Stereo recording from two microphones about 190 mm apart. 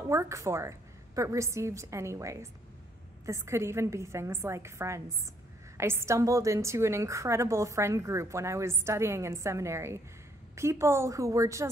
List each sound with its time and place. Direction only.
0.0 s a woman's voice: 15° right (ahead or behind)